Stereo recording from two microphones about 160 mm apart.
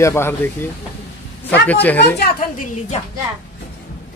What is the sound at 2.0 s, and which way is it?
Speech, 80° left.